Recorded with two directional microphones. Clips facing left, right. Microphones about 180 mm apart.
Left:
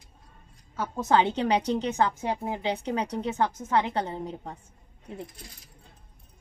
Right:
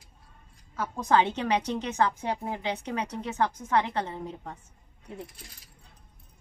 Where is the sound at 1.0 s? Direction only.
25° left (ahead or behind).